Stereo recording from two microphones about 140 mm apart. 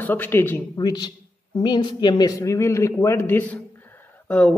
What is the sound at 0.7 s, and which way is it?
A man's voice, 30° left (ahead or behind).